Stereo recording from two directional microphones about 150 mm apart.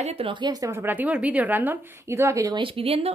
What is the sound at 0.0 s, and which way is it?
A woman's voice, 40° right (ahead or behind).